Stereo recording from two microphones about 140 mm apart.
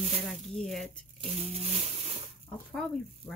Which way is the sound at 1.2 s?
45° right (ahead or behind).